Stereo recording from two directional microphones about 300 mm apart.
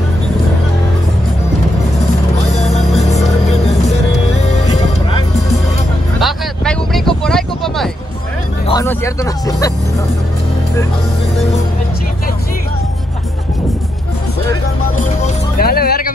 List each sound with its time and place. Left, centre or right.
4.3 s music: left
6.1 s a sound: centre
8.6 s music: centre
15.0 s music: left